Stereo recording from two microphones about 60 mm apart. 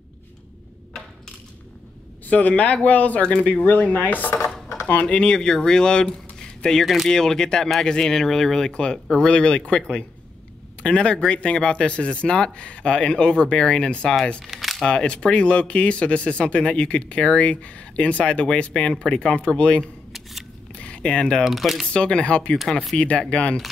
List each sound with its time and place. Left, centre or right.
2.2 s speech: left
3.2 s speech: centre
3.4 s speech: left
5.0 s speech: centre
14.4 s crumpling: centre
14.9 s speech: centre
20.1 s scissors: centre
20.7 s a sound: centre
21.5 s speech: centre
21.9 s speech: centre